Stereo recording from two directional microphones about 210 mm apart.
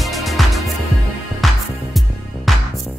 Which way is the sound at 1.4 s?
Centre (ahead or behind).